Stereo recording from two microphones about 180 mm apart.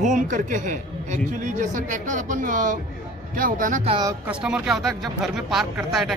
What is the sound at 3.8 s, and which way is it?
Speech, 30° right (ahead or behind).